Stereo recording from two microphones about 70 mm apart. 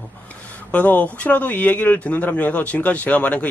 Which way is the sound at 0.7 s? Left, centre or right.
Left.